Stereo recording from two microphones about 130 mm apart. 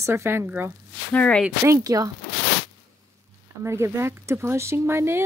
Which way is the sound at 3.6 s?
20° right (ahead or behind).